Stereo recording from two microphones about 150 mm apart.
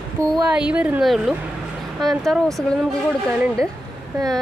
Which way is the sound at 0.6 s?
5° right (ahead or behind).